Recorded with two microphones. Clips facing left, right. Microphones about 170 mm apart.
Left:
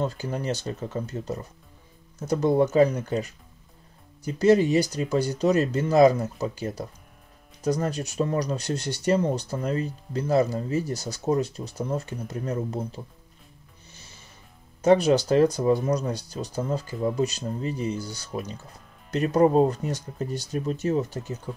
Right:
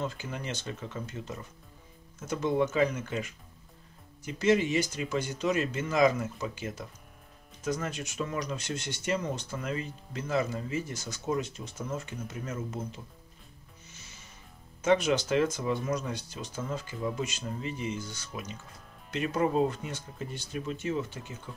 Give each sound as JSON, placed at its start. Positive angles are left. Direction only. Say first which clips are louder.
{"t": 0.0, "sound": "speech", "louder": "left 7 dB", "side_deg": 40}
{"t": 14.8, "sound": "speech", "louder": "left 7 dB", "side_deg": 35}